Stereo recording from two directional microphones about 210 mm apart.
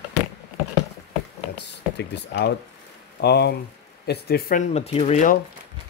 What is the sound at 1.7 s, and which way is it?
Speech, 55° left (ahead or behind).